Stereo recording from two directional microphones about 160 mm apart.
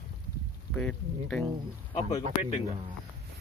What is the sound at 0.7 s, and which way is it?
Speech, 5° left (ahead or behind).